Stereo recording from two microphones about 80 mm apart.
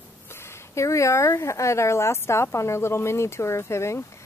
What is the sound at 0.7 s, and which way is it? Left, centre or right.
Speech, left.